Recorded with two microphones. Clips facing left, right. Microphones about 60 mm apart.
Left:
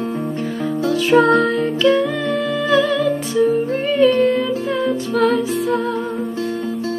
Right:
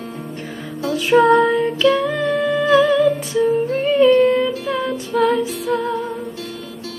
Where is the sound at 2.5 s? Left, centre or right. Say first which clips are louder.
Right 3 dB; right.